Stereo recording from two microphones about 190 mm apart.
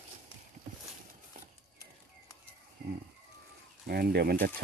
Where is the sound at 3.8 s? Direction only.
55° right (ahead or behind).